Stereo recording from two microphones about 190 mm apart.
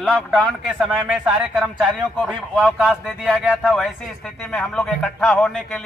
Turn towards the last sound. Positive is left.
turn(degrees=5)  # may be behind; listen again after turning